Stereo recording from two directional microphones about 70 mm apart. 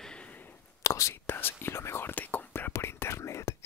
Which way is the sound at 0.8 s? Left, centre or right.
Left.